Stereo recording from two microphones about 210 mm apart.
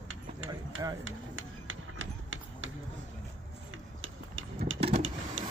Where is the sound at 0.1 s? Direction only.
70° right (ahead or behind).